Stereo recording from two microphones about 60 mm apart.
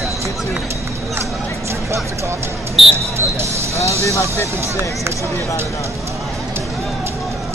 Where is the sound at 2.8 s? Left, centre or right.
Centre.